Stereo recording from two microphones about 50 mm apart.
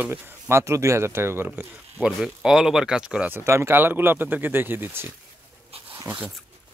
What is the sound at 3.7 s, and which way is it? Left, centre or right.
Speech, right.